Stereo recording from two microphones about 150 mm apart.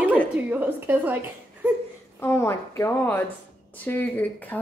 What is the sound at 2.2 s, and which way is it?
A woman's voice, 15° left (ahead or behind).